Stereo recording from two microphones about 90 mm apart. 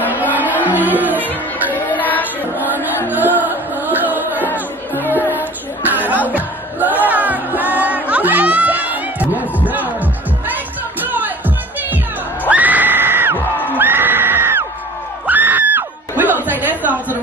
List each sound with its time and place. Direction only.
0.7 s music: 20° right (ahead or behind)
1.7 s music: 20° left (ahead or behind)
2.6 s music: 20° right (ahead or behind)
4.4 s music: 25° left (ahead or behind)
5.0 s music: 20° right (ahead or behind)
6.2 s crowd: 20° right (ahead or behind)
7.1 s music: 20° right (ahead or behind)
11.0 s music: 20° right (ahead or behind)
13.7 s a sound: 20° right (ahead or behind)
15.2 s screaming: 20° right (ahead or behind)
16.4 s a sound: 20° right (ahead or behind)